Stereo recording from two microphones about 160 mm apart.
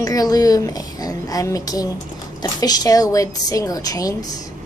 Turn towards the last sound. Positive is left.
turn(degrees=20)  # may be behind; listen again after turning